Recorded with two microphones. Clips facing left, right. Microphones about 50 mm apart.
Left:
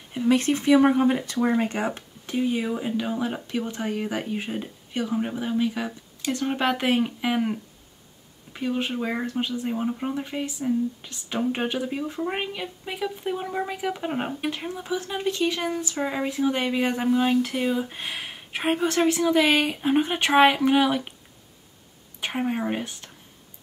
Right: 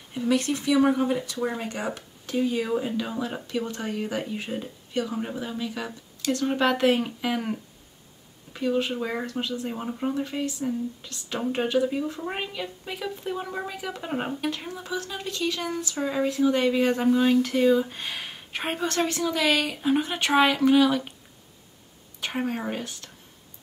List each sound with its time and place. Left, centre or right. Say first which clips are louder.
0.3 s speech: left 4 dB; left
2.0 s speech: even; left
8.5 s speech: right 1 dB; left
9.2 s speech: left 3 dB; left
9.5 s speech: left 4 dB; centre
22.2 s speech: left 2 dB; centre